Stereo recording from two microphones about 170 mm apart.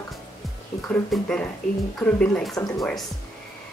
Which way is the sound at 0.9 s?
5° left (ahead or behind).